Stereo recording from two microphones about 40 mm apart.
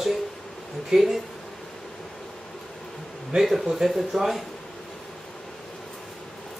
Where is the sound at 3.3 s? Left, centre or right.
Centre.